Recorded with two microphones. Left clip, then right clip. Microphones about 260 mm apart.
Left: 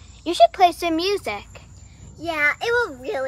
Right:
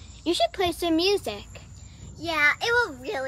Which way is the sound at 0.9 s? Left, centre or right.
Centre.